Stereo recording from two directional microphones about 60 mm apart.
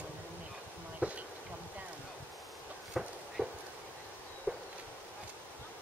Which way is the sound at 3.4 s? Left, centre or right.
Right.